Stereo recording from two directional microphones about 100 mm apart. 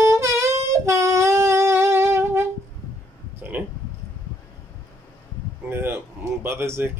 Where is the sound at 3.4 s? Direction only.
15° right (ahead or behind).